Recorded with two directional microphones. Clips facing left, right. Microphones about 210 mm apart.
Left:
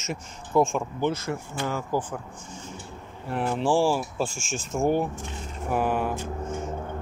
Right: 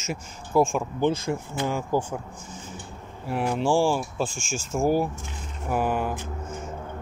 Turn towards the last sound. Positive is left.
turn(degrees=0)  # may be behind; listen again after turning